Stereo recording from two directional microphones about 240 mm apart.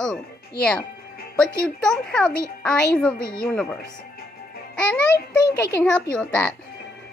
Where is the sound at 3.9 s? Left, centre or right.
Left.